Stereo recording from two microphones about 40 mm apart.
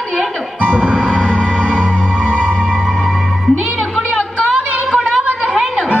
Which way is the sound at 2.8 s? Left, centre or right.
Centre.